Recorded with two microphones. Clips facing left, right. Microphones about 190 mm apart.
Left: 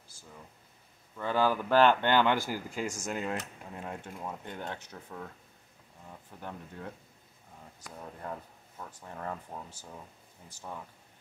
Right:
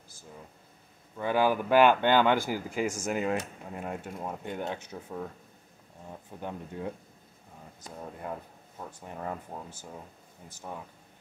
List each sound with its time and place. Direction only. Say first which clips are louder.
1.1 s speech: right 2 dB; 15° right (ahead or behind)
4.2 s speech: right 5 dB; 20° right (ahead or behind)